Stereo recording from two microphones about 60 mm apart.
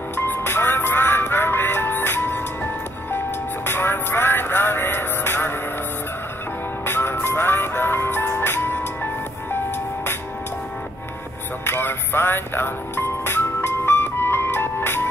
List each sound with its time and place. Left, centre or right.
0.1 s music: left
6.9 s music: left
11.6 s music: left